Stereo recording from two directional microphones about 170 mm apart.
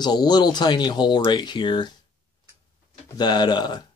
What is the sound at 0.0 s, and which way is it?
Speech, 25° left (ahead or behind).